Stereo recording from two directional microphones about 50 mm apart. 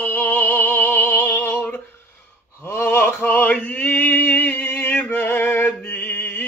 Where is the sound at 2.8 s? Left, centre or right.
Left.